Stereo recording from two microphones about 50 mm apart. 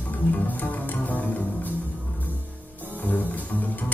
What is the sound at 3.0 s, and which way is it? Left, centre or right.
Music, left.